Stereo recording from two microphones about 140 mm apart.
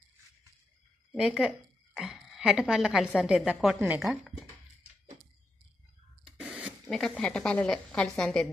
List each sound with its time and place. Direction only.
1.1 s a woman's voice: centre (ahead or behind)
2.0 s a sound: centre (ahead or behind)
2.7 s a woman's voice: 5° right (ahead or behind)
6.4 s speech: 5° right (ahead or behind)